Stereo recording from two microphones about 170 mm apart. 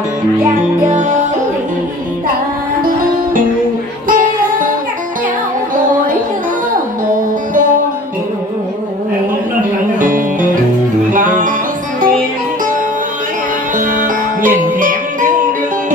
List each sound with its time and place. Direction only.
0.8 s music: 45° right (ahead or behind)
4.1 s music: 55° right (ahead or behind)
7.1 s music: 50° right (ahead or behind)
9.9 s music: 55° right (ahead or behind)
13.7 s music: 50° right (ahead or behind)